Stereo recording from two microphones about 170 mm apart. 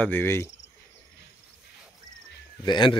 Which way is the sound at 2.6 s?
25° left (ahead or behind).